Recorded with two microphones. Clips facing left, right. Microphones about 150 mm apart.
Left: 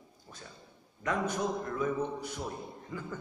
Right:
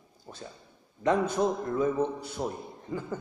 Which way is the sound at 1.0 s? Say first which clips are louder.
Right 6 dB; 30° right (ahead or behind).